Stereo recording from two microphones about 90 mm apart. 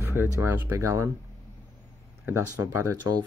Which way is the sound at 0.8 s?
35° right (ahead or behind).